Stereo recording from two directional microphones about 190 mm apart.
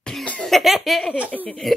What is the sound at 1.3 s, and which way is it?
Speech, 5° left (ahead or behind).